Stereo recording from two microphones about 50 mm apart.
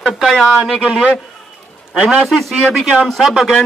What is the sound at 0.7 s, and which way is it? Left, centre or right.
Speech, centre.